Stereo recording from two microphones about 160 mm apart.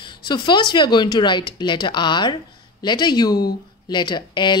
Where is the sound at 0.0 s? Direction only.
30° left (ahead or behind).